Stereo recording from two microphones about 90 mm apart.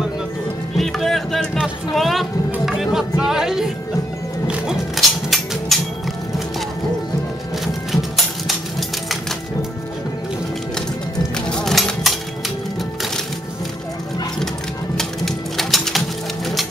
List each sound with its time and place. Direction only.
0.7 s music: 5° left (ahead or behind)
1.6 s speech: centre (ahead or behind)
2.6 s music: 5° right (ahead or behind)
11.3 s music: 10° left (ahead or behind)
15.0 s music: 5° left (ahead or behind)